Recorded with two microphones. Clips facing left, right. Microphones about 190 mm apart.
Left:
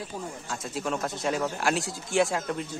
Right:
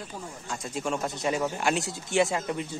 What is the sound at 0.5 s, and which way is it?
Speech, centre (ahead or behind).